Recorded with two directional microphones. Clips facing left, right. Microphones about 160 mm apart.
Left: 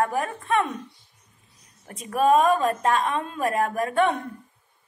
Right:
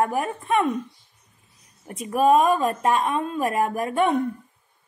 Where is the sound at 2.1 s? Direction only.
10° right (ahead or behind).